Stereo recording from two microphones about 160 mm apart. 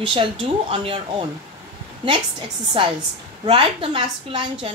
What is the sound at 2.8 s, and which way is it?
A woman's voice, 35° right (ahead or behind).